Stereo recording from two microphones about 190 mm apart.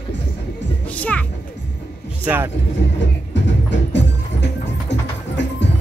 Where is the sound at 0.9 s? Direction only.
10° left (ahead or behind).